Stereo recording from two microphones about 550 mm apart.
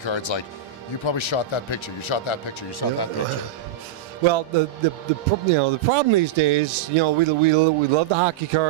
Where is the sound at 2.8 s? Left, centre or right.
Left.